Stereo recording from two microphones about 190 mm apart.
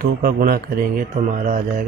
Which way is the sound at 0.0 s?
50° right (ahead or behind).